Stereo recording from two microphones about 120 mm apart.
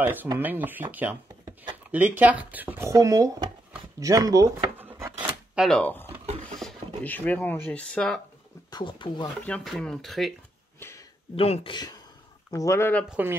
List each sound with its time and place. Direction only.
0.0 s speech: 15° right (ahead or behind)
2.9 s speech: 30° right (ahead or behind)
5.5 s speech: 5° right (ahead or behind)
5.8 s speech: 10° left (ahead or behind)
6.5 s a sound: 5° left (ahead or behind)
7.0 s speech: 15° left (ahead or behind)
8.6 s speech: 40° left (ahead or behind)
9.5 s speech: 5° left (ahead or behind)
10.8 s a sound: 25° left (ahead or behind)
11.3 s speech: 55° left (ahead or behind)
11.7 s speech: 35° left (ahead or behind)
13.1 s speech: 15° right (ahead or behind)